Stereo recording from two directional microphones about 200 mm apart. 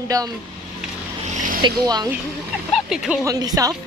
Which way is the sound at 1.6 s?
20° right (ahead or behind).